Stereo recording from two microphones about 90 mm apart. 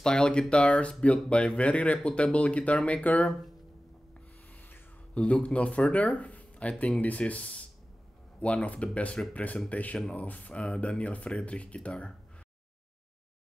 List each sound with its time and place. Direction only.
0.0 s speech: 10° left (ahead or behind)
4.6 s speech: 15° left (ahead or behind)